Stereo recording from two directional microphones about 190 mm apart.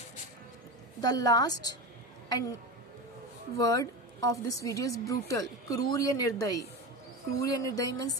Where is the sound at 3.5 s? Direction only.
15° left (ahead or behind).